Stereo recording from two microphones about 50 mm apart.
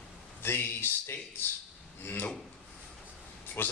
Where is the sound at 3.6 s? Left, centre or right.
Left.